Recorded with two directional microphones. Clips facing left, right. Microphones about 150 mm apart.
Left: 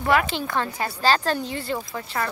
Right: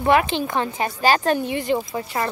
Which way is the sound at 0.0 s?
20° right (ahead or behind).